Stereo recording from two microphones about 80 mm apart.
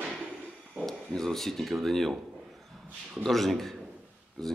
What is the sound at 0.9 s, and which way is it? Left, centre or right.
Speech, centre.